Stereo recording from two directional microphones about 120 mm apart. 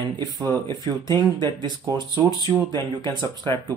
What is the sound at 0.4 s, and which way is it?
Speech, 40° right (ahead or behind).